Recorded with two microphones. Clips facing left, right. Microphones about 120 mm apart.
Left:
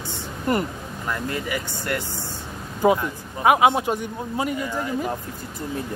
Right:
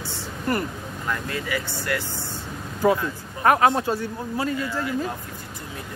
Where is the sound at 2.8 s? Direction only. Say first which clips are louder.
Left 1 dB; 20° left (ahead or behind).